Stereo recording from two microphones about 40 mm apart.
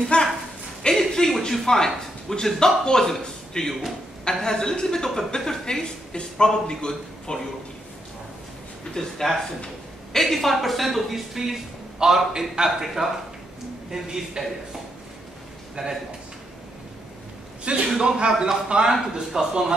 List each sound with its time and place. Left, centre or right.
0.1 s a sound: left
0.9 s a sound: centre
2.2 s a man's voice: centre
8.9 s a woman's voice: centre
15.7 s a man's voice: centre
17.9 s speech: centre